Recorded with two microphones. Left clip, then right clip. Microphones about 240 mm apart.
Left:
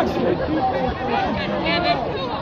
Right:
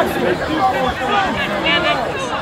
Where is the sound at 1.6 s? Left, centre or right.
Right.